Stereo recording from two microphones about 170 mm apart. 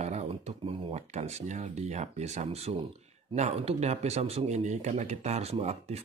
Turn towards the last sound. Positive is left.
turn(degrees=-40)  # may be behind; listen again after turning